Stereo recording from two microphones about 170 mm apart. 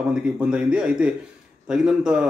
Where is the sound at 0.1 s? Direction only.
5° right (ahead or behind).